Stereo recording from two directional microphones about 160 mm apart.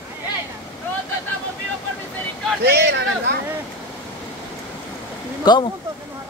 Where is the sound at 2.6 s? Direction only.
90° right.